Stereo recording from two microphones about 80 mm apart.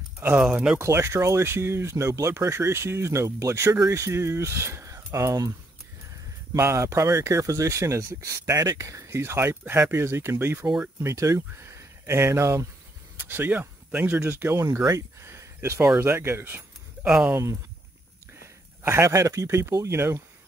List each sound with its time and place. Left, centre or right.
0.3 s speech: centre
0.7 s speech: right
6.5 s speech: right
13.2 s speech: right
17.0 s speech: centre
17.3 s speech: right